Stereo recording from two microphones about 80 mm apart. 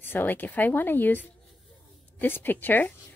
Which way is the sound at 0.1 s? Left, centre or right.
Left.